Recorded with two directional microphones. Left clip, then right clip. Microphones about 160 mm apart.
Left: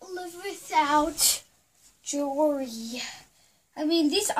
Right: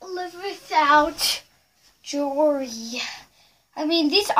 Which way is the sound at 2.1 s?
30° left (ahead or behind).